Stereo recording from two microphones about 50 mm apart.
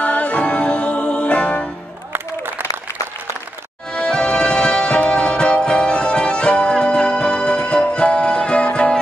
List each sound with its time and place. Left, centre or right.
0.0 s music: left
3.9 s music: centre